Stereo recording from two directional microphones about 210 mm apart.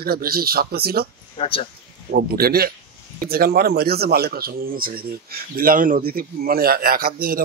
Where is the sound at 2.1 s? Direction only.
45° right (ahead or behind).